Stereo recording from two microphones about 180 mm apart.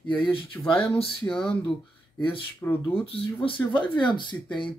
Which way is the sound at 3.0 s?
30° left (ahead or behind).